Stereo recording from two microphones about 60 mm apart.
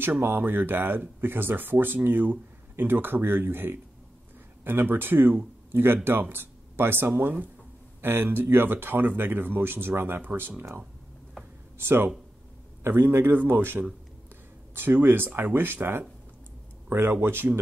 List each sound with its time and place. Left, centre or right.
0.2 s speech: right
11.8 s speech: right